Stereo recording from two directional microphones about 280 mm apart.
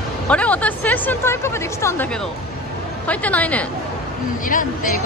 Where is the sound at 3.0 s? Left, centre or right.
Centre.